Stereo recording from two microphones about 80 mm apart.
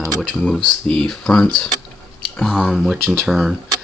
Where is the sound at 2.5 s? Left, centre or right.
Centre.